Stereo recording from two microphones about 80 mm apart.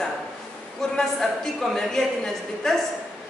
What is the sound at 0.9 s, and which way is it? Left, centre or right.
A man's voice, centre.